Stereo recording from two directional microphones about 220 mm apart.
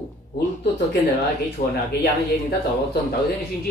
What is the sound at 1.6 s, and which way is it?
Speech, 35° left (ahead or behind).